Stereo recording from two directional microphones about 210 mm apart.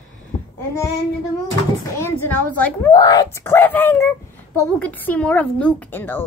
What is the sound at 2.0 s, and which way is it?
A woman's voice, 10° left (ahead or behind).